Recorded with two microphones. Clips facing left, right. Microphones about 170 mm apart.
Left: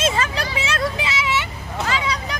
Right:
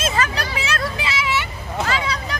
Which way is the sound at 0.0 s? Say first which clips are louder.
Left 1 dB; 25° left (ahead or behind).